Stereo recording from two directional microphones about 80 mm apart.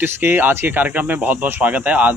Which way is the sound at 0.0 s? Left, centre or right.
Right.